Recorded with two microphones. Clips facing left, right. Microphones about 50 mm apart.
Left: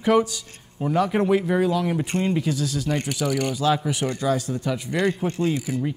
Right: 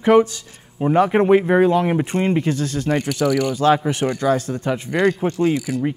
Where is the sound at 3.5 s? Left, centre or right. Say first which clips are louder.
Right 6 dB; right.